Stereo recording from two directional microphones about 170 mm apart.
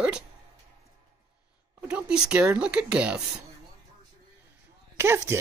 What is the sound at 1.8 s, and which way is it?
Speech, 5° right (ahead or behind).